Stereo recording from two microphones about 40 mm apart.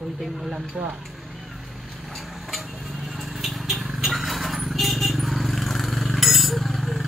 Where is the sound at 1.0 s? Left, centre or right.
Centre.